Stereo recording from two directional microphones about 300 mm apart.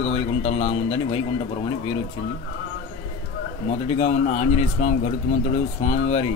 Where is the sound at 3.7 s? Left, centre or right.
Left.